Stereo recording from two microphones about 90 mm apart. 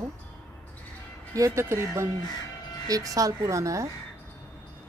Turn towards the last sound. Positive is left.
turn(degrees=-35)  # may be behind; listen again after turning